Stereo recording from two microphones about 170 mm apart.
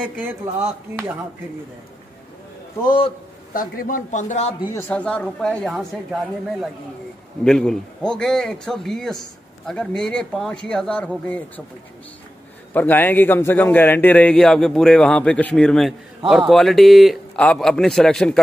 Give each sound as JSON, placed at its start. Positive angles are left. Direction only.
{"t": 0.0, "sound": "speech", "side_deg": -10}
{"t": 2.8, "sound": "a man's voice", "side_deg": 25}
{"t": 3.5, "sound": "a man's voice", "side_deg": 55}
{"t": 4.7, "sound": "a man's voice", "side_deg": 10}
{"t": 7.4, "sound": "a man's voice", "side_deg": 5}
{"t": 12.7, "sound": "a man's voice", "side_deg": 10}